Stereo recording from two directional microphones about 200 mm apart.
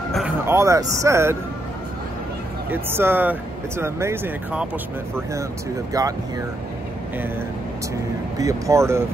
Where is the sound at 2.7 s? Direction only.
10° right (ahead or behind).